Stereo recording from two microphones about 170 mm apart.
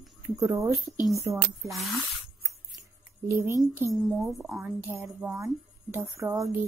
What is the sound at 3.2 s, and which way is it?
Speech, 15° right (ahead or behind).